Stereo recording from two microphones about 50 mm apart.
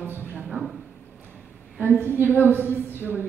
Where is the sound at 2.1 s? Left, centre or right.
Right.